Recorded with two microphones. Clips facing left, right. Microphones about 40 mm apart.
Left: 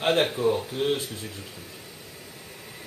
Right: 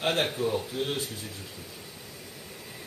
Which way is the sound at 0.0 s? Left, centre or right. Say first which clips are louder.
Left 5 dB; centre.